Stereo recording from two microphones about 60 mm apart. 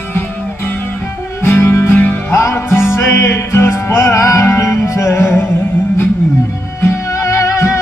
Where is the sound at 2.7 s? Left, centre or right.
Left.